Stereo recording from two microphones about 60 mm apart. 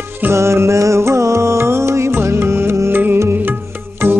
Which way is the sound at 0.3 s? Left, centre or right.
Right.